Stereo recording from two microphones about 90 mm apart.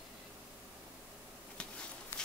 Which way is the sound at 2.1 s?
25° left (ahead or behind).